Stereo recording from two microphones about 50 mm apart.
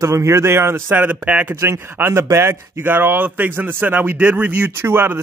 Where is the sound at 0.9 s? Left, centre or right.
Right.